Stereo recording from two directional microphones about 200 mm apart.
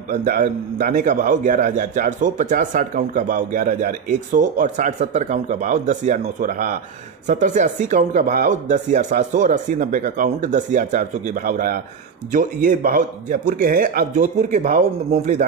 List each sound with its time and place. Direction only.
0.1 s a man's voice: 40° right (ahead or behind)